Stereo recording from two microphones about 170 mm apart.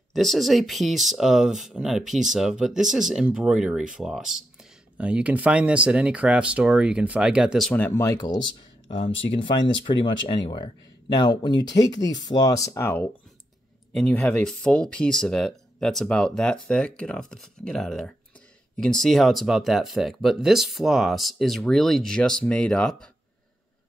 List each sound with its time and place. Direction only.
0.1 s speech: centre (ahead or behind)